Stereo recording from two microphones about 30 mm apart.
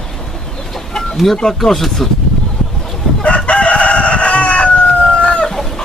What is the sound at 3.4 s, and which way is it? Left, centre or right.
Chicken, left.